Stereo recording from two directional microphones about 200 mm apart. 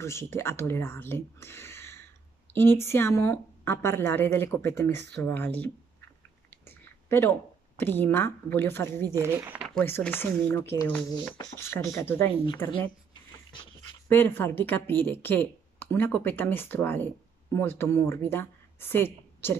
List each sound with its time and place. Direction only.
0.0 s a woman's voice: 15° left (ahead or behind)
7.1 s speech: 10° left (ahead or behind)
9.1 s speech: 15° right (ahead or behind)
9.8 s a woman's voice: 10° left (ahead or behind)
14.0 s a woman's voice: 10° left (ahead or behind)